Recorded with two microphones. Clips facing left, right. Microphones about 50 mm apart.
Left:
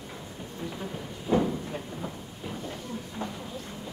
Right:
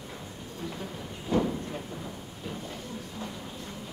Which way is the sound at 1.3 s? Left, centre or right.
Centre.